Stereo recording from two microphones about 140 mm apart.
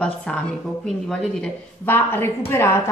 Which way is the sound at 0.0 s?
5° left (ahead or behind).